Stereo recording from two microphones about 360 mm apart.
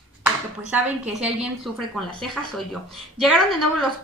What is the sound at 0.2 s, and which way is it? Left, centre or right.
Speech, centre.